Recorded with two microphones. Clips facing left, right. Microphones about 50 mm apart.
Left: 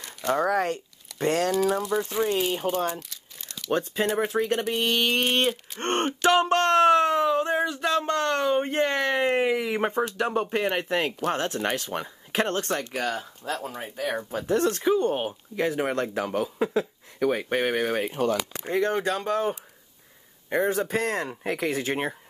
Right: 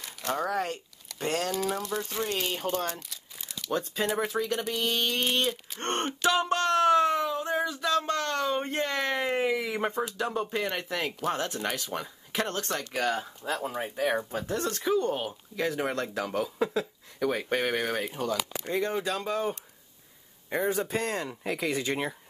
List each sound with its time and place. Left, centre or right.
0.0 s a sound: centre
0.4 s speech: left
1.5 s speech: centre
2.2 s speech: centre
3.1 s crumpling: centre
3.7 s speech: left
6.2 s a sound: left
8.1 s speech: left
12.9 s speech: centre
13.2 s speech: centre
13.7 s speech: centre
14.3 s speech: left; by 17.9 s centre
18.1 s speech: left
20.9 s speech: left